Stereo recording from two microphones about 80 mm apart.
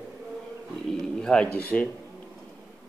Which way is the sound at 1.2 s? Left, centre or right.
Centre.